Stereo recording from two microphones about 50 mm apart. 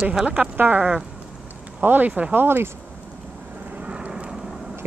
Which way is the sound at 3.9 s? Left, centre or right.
Right.